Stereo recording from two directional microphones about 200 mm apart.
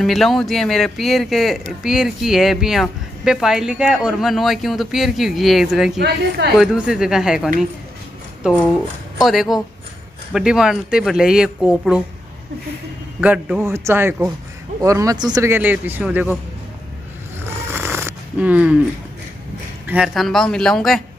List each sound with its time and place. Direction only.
0.0 s speech: centre (ahead or behind)
5.9 s a woman's voice: 55° right (ahead or behind)
6.6 s speech: centre (ahead or behind)
9.2 s speech: centre (ahead or behind)
13.2 s speech: 5° right (ahead or behind)
17.4 s a sound: 10° right (ahead or behind)
19.9 s speech: centre (ahead or behind)